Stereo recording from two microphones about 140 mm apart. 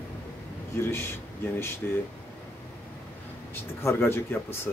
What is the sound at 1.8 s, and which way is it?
Speech, 5° left (ahead or behind).